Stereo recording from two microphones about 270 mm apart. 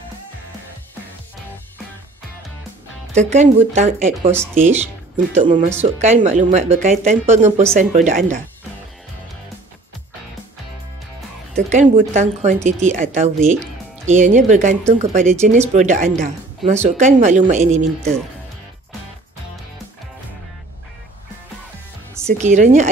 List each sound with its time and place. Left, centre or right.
3.2 s speech: right
11.5 s speech: right
22.4 s speech: right